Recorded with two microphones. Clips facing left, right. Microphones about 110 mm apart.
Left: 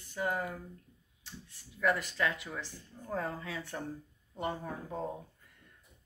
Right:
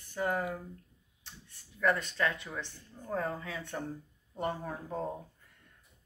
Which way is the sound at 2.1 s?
10° left (ahead or behind).